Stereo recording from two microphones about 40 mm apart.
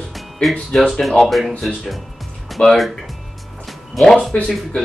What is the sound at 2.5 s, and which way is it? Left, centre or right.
Speech, centre.